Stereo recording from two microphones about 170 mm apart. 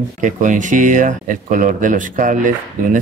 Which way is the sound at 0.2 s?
50° right (ahead or behind).